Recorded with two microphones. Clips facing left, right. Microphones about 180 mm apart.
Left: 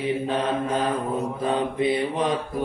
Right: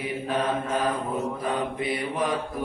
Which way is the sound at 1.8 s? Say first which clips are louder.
Left 5 dB; 25° left (ahead or behind).